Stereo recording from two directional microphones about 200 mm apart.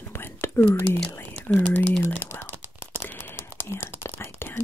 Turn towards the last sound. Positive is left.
turn(degrees=10)  # may be behind; listen again after turning